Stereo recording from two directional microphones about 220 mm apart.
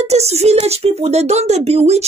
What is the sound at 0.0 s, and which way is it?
Speech, 30° right (ahead or behind).